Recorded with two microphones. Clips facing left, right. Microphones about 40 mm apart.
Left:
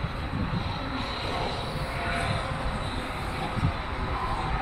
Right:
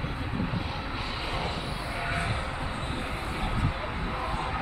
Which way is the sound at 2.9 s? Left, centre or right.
Centre.